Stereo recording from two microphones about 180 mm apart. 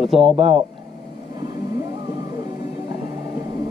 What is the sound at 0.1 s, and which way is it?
Speech, 35° right (ahead or behind).